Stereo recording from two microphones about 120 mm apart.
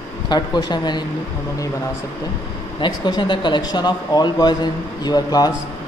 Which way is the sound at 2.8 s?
40° left (ahead or behind).